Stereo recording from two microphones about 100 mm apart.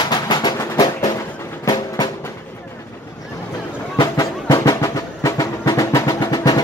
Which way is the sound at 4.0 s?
35° left (ahead or behind).